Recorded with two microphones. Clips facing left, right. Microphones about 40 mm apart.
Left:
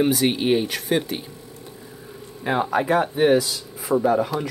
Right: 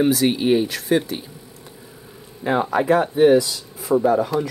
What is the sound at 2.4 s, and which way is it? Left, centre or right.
Speech, centre.